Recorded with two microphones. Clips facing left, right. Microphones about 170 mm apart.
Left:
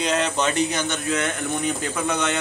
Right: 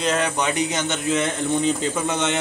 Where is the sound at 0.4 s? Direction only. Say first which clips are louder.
Even; 15° right (ahead or behind).